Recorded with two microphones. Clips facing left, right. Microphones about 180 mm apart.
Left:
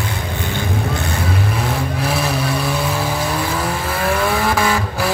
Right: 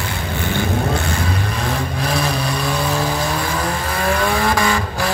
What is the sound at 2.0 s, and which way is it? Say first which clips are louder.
Vehicle: even; 5° left (ahead or behind).